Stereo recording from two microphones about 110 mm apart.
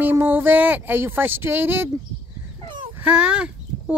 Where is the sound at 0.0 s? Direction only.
20° right (ahead or behind).